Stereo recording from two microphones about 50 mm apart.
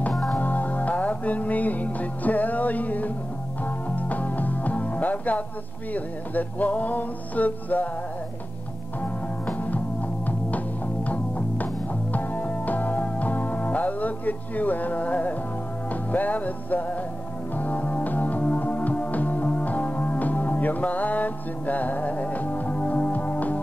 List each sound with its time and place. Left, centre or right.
0.1 s music: centre
0.4 s music: left
9.0 s music: left
11.1 s music: left